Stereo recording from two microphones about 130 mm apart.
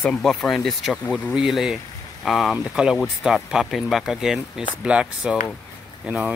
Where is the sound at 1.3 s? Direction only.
5° right (ahead or behind).